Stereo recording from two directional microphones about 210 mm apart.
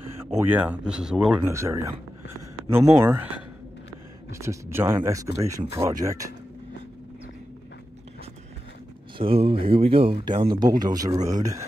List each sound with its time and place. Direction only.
0.4 s speech: 10° right (ahead or behind)
1.5 s speech: 15° right (ahead or behind)
9.2 s speech: 25° right (ahead or behind)
11.1 s speech: 35° right (ahead or behind)